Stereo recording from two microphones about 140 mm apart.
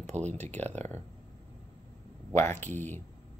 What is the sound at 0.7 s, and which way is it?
Speech, 55° right (ahead or behind).